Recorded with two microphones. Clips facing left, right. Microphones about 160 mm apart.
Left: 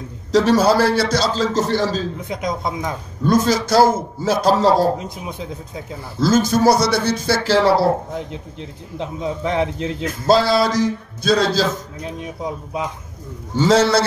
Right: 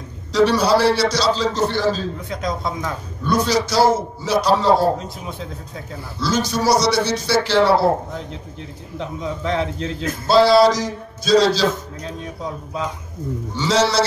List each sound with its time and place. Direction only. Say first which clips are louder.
0.3 s a man's voice: left 1 dB; 45° left (ahead or behind)
2.2 s a man's voice: left 1 dB; 20° left (ahead or behind)
3.3 s a man's voice: left 3 dB; 45° left (ahead or behind)
4.9 s speech: left 1 dB; 15° left (ahead or behind)
6.1 s a man's voice: left 5 dB; 45° left (ahead or behind)
8.3 s a man's voice: left 2 dB; 20° left (ahead or behind)
10.2 s a man's voice: right 3 dB; 45° left (ahead or behind)
12.0 s a man's voice: left 2 dB; 20° left (ahead or behind)
13.6 s a man's voice: left 4 dB; 50° left (ahead or behind)